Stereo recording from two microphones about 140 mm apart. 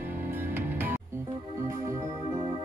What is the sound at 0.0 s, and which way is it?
Music, 15° right (ahead or behind).